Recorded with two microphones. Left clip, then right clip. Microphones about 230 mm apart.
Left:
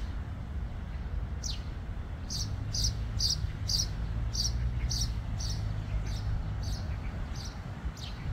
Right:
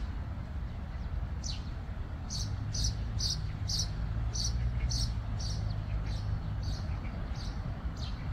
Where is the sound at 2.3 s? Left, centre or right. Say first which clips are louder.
Left 3 dB; left.